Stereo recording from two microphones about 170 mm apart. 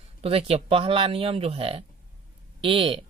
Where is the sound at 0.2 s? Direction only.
35° right (ahead or behind).